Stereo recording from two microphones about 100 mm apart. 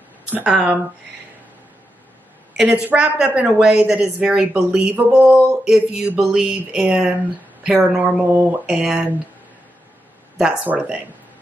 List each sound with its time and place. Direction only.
0.3 s speech: 10° right (ahead or behind)
2.5 s speech: 5° right (ahead or behind)
8.3 s speech: 20° right (ahead or behind)
8.6 s speech: 10° right (ahead or behind)
10.3 s speech: 5° right (ahead or behind)